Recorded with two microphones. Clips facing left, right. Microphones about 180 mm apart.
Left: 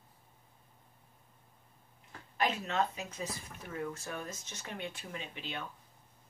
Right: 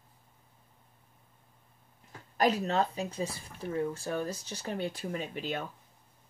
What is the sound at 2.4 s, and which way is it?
Speech, 40° right (ahead or behind).